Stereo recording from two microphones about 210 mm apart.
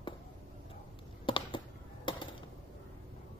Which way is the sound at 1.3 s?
25° left (ahead or behind).